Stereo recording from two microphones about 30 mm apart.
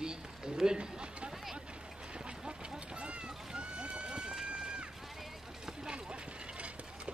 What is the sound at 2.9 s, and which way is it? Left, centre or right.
Run, right.